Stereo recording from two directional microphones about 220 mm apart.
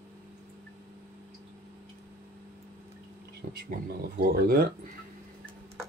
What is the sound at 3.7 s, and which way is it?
Speech, 45° right (ahead or behind).